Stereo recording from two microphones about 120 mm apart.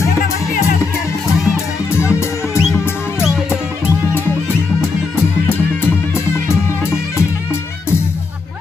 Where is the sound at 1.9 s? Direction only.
20° left (ahead or behind).